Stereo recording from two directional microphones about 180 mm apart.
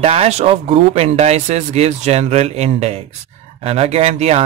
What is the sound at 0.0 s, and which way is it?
A man's voice, 35° right (ahead or behind).